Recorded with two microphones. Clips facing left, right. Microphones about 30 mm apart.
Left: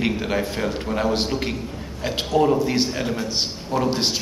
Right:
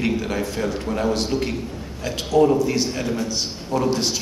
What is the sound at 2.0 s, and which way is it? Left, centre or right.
Speech, left.